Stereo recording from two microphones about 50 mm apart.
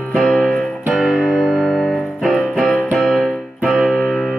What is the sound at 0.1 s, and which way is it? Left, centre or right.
Music, centre.